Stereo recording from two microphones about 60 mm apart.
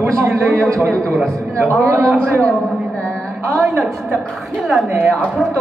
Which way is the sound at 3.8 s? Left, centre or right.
Centre.